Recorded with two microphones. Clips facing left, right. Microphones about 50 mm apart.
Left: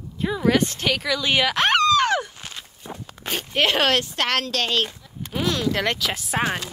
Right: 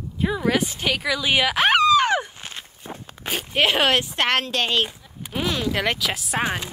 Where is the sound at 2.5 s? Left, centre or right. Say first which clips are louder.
Right 1 dB; right.